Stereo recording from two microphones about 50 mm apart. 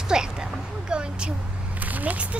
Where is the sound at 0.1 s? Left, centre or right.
Centre.